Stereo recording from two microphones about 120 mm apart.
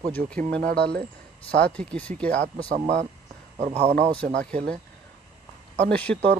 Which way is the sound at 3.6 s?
60° right (ahead or behind).